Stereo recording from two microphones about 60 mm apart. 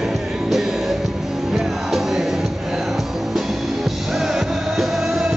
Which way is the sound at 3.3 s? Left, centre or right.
Centre.